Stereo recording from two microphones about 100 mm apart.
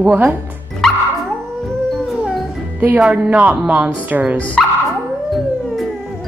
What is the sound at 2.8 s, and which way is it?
Speech, 15° right (ahead or behind).